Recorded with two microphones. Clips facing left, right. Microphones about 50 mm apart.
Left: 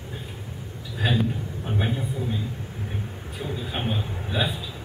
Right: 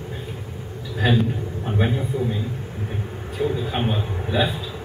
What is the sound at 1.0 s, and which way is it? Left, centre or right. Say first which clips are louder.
A man's voice: right 4 dB; centre.